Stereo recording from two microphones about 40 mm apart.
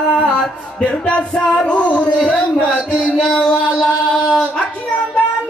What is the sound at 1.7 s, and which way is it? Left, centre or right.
Music, left.